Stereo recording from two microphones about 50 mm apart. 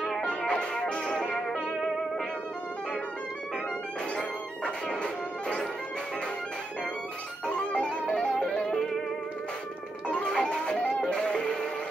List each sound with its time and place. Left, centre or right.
0.2 s music: centre
4.2 s music: left
7.4 s music: centre
10.0 s music: centre